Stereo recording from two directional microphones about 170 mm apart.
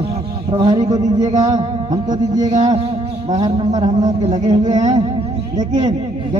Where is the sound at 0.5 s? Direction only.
25° right (ahead or behind).